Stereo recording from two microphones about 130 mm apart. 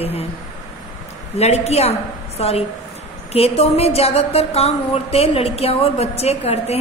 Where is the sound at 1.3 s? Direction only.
55° left (ahead or behind).